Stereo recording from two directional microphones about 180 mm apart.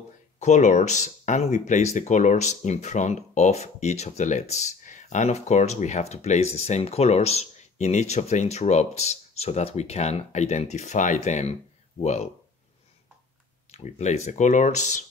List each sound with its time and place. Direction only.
0.4 s speech: 40° left (ahead or behind)
13.7 s speech: 40° left (ahead or behind)